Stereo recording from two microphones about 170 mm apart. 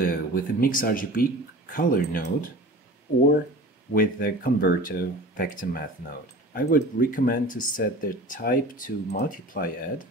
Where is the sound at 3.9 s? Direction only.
55° left (ahead or behind).